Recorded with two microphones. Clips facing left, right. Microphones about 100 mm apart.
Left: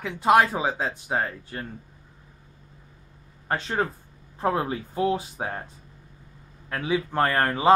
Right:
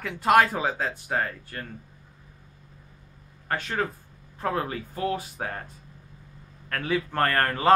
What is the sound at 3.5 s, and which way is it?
Speech, 25° left (ahead or behind).